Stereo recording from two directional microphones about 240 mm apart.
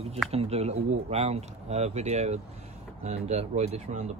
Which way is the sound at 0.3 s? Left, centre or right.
Right.